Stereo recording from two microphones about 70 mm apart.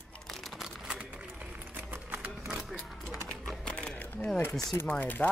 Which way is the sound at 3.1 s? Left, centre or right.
Centre.